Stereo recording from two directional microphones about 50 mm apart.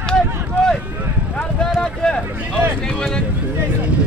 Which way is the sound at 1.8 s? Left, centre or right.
Centre.